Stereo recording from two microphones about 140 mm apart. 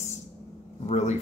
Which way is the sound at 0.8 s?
55° left (ahead or behind).